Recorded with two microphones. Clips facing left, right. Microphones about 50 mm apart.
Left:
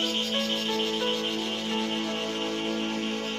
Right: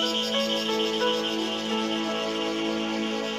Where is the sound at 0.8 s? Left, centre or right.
Centre.